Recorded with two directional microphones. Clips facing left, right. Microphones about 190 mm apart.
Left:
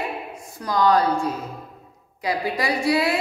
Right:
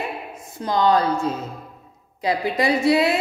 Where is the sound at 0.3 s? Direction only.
25° right (ahead or behind).